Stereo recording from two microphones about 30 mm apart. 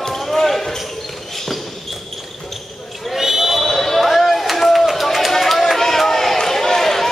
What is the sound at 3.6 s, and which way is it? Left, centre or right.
Basketball bounce, centre.